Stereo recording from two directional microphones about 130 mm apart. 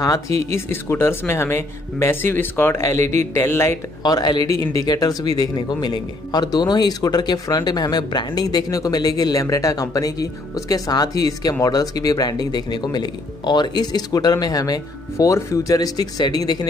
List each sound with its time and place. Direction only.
0.0 s speech: 25° left (ahead or behind)